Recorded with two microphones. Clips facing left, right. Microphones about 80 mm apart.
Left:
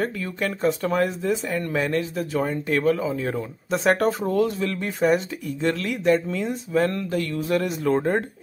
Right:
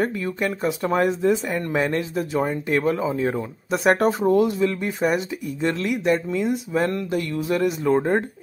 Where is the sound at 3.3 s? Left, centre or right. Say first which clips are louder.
Right 1 dB; centre.